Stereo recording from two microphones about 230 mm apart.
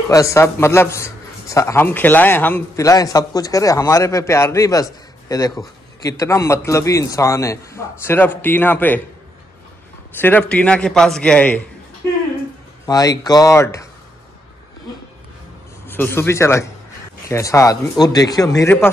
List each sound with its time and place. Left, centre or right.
0.1 s a man's voice: centre
10.1 s a man's voice: centre
12.8 s a man's voice: centre
15.9 s a man's voice: centre